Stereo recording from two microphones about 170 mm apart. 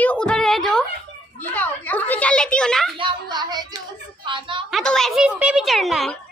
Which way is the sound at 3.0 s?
25° right (ahead or behind).